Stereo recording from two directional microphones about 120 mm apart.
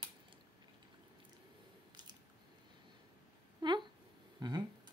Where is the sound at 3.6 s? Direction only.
40° right (ahead or behind).